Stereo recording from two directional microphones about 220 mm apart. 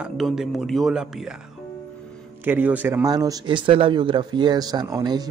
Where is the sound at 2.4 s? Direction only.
10° right (ahead or behind).